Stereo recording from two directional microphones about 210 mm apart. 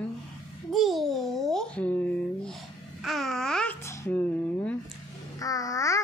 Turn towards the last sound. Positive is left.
turn(degrees=15)  # may be behind; listen again after turning